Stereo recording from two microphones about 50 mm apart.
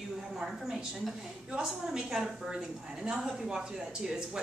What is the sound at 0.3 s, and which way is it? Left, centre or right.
A woman's voice, centre.